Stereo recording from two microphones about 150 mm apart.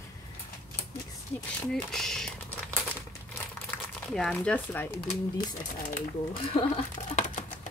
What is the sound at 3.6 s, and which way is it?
Speech, 5° left (ahead or behind).